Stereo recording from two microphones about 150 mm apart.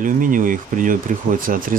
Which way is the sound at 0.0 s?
65° right (ahead or behind).